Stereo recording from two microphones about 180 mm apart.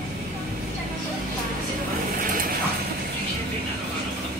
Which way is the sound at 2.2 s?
50° right (ahead or behind).